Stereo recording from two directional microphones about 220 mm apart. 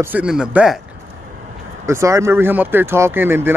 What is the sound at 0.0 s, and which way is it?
Speech, 5° right (ahead or behind).